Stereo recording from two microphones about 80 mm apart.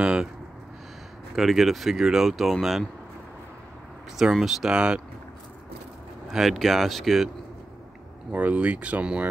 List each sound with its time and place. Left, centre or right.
0.0 s a sound: centre
1.3 s speech: centre
4.2 s speech: centre
6.2 s speech: centre
8.3 s speech: centre